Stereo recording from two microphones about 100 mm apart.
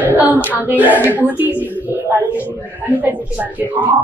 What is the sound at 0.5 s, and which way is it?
Speech, 15° right (ahead or behind).